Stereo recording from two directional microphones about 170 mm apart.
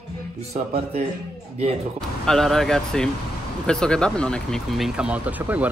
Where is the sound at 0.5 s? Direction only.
45° right (ahead or behind).